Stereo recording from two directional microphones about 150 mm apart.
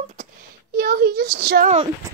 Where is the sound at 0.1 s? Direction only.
75° right (ahead or behind); by 1.7 s 90° right.